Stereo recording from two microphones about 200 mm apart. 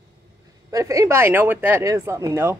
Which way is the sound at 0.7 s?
15° right (ahead or behind).